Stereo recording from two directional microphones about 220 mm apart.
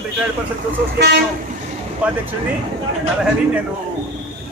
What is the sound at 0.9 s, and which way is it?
Speech, 50° right (ahead or behind).